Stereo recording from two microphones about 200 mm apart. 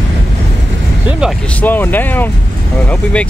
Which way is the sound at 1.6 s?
10° left (ahead or behind).